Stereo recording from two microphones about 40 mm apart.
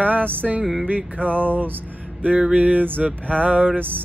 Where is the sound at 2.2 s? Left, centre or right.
Right.